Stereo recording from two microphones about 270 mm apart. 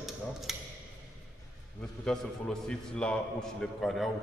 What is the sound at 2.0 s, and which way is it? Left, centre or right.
Speech, centre.